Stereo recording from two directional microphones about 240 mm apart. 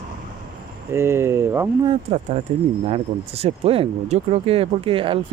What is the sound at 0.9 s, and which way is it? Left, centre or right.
Speech, centre.